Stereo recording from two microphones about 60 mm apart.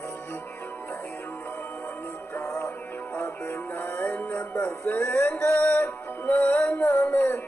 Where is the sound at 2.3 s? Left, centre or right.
Left.